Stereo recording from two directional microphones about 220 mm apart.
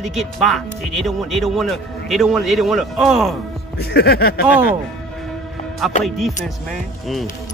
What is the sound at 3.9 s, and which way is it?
Speech, 45° left (ahead or behind).